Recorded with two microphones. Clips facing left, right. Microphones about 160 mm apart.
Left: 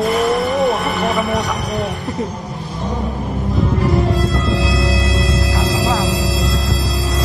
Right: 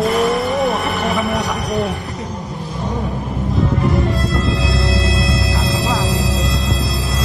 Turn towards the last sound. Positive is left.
turn(degrees=40)  # may be behind; listen again after turning